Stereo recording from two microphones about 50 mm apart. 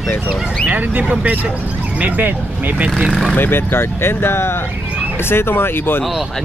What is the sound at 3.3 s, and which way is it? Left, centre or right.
Speech, left.